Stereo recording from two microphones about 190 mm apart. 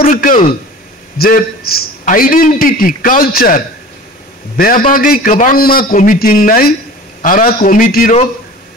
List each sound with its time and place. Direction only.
0.0 s a man's voice: 50° left (ahead or behind)